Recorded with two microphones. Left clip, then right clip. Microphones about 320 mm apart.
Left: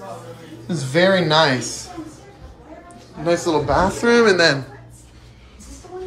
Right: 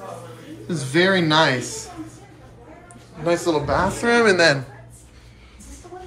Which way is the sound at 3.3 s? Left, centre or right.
Centre.